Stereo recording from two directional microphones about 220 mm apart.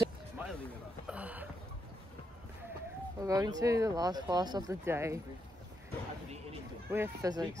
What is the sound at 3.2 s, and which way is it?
Speech, 15° right (ahead or behind).